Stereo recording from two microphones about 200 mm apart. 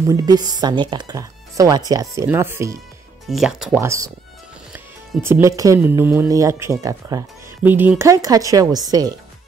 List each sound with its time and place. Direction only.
0.0 s speech: 20° right (ahead or behind)
3.3 s speech: centre (ahead or behind); by 9.1 s 20° right (ahead or behind)